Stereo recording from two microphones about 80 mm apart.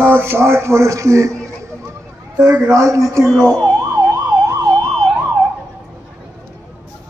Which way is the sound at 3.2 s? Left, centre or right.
Centre.